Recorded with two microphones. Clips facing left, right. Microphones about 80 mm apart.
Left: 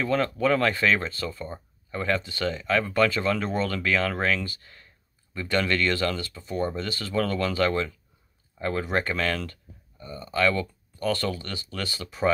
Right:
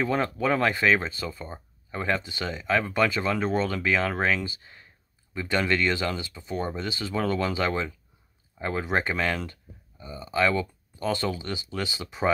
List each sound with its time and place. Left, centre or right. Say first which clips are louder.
0.0 s speech: left 1 dB; right